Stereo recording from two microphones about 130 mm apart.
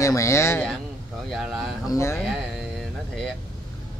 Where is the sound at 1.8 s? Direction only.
20° left (ahead or behind).